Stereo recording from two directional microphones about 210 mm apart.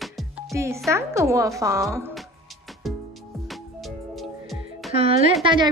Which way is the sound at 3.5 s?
Centre (ahead or behind).